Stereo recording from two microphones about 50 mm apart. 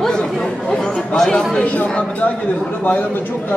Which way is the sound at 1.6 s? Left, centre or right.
Left.